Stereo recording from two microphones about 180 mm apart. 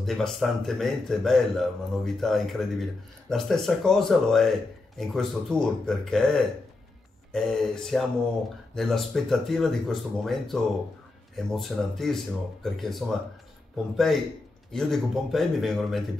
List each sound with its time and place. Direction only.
0.0 s speech: centre (ahead or behind)